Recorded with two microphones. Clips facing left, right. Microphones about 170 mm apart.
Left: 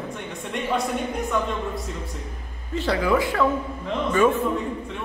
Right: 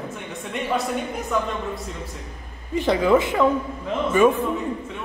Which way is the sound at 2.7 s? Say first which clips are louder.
Right 4 dB; 20° right (ahead or behind).